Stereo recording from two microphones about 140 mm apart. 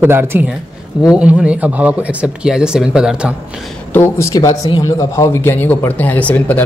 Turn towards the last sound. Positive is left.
turn(degrees=10)  # may be behind; listen again after turning